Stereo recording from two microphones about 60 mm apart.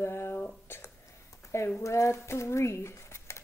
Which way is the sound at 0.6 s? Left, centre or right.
Left.